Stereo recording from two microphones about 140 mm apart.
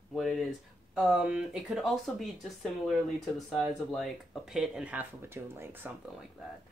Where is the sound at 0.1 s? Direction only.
Centre (ahead or behind).